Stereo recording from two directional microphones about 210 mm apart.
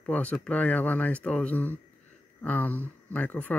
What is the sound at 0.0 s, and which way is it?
Speech, 5° left (ahead or behind).